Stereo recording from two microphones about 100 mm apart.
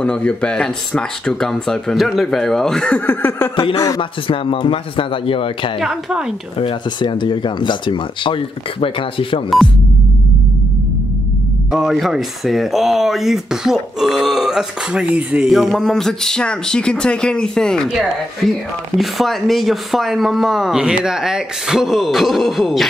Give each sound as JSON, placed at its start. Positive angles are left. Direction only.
{"t": 0.0, "sound": "speech", "side_deg": 10}
{"t": 3.1, "sound": "a sound", "side_deg": 20}
{"t": 3.7, "sound": "speech", "side_deg": 30}
{"t": 4.0, "sound": "speech", "side_deg": 60}
{"t": 5.8, "sound": "speech", "side_deg": -5}
{"t": 6.6, "sound": "speech", "side_deg": 50}
{"t": 11.7, "sound": "speech", "side_deg": 0}
{"t": 15.5, "sound": "speech", "side_deg": 0}
{"t": 18.9, "sound": "speech", "side_deg": 0}